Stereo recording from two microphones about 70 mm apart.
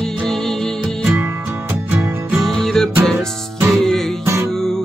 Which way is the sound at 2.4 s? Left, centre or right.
Centre.